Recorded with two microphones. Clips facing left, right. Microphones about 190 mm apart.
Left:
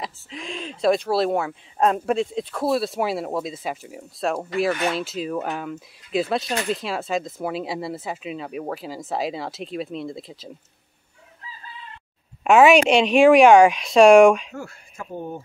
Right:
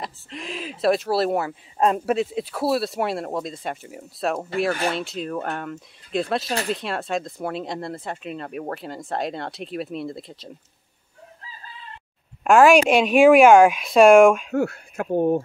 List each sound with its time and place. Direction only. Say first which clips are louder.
0.0 s speech: even; centre (ahead or behind)
12.4 s speech: even; centre (ahead or behind)
14.5 s speech: right 12 dB; 65° right (ahead or behind)